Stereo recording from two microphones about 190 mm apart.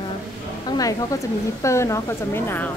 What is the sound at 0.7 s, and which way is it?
A woman's voice, 20° left (ahead or behind).